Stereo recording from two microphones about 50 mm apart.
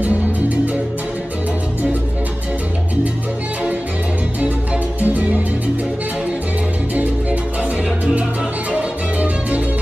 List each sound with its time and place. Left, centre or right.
5.0 s music: right
8.7 s music: right